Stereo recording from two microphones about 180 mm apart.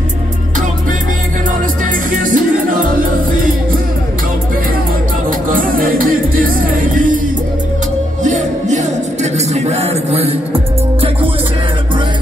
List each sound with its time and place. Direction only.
2.0 s music: 50° right (ahead or behind)
5.5 s music: 50° right (ahead or behind)
8.2 s music: 40° right (ahead or behind)